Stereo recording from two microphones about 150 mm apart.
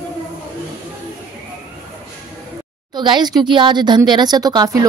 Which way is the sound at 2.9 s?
30° right (ahead or behind).